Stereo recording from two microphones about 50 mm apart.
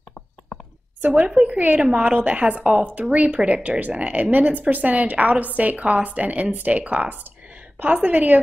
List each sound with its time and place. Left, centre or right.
1.0 s a woman's voice: right